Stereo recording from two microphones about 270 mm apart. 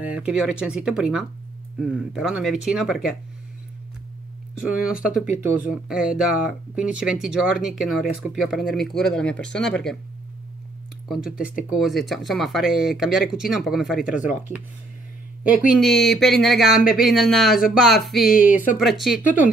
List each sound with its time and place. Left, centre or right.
0.0 s speech: centre
4.6 s speech: centre
5.1 s speech: left
5.7 s speech: centre
11.1 s speech: centre
15.8 s speech: centre
18.2 s speech: left
18.8 s speech: centre
19.2 s speech: left